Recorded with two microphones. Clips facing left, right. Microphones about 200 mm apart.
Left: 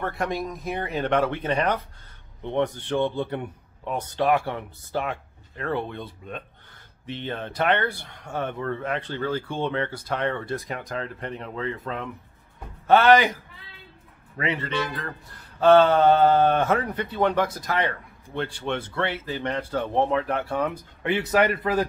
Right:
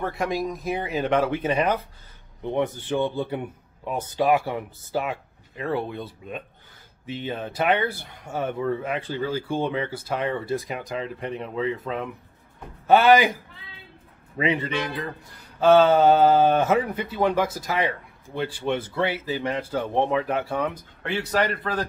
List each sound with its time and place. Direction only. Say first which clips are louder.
0.0 s speech: right 2 dB; centre (ahead or behind)
15.6 s a man's voice: even; centre (ahead or behind)